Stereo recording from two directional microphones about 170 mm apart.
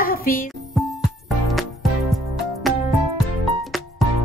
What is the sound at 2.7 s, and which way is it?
Music, centre (ahead or behind).